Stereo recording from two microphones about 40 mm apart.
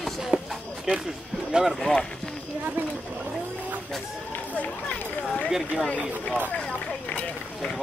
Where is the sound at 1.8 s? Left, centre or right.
Centre.